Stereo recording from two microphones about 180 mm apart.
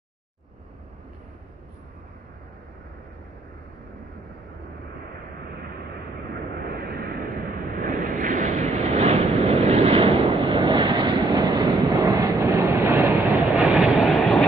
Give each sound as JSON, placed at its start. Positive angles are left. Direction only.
{"t": 6.6, "sound": "vehicle", "side_deg": -55}